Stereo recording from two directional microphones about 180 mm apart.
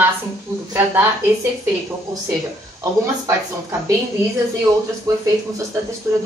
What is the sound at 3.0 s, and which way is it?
A woman's voice, 20° right (ahead or behind).